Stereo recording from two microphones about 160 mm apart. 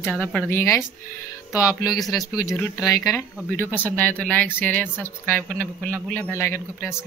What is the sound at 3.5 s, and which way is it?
A woman's voice, 10° left (ahead or behind).